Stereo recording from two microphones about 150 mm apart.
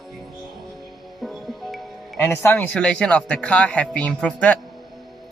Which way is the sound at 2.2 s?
15° left (ahead or behind).